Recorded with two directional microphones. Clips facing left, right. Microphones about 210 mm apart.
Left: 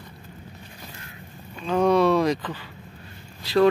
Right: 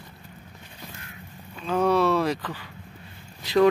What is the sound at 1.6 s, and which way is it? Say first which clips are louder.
Speech: left 2 dB; 5° right (ahead or behind).